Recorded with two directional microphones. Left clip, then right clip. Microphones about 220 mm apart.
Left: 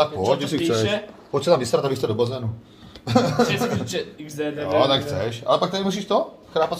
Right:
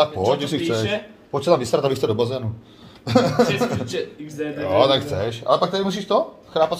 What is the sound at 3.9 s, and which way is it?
Speech, 40° left (ahead or behind).